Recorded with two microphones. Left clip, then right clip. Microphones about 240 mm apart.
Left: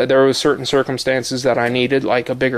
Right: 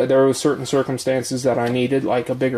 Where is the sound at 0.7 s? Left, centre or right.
Centre.